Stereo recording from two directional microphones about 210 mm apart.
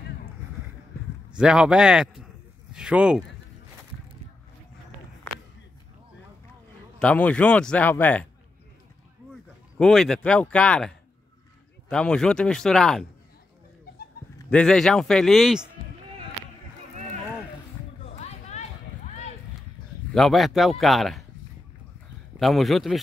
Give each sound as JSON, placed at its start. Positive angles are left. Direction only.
{"t": 1.4, "sound": "a man's voice", "side_deg": -5}
{"t": 7.0, "sound": "a man's voice", "side_deg": 5}
{"t": 9.8, "sound": "a man's voice", "side_deg": 5}
{"t": 14.5, "sound": "a man's voice", "side_deg": 5}
{"t": 18.0, "sound": "a sound", "side_deg": 30}
{"t": 20.2, "sound": "a man's voice", "side_deg": 0}
{"t": 22.4, "sound": "a man's voice", "side_deg": 0}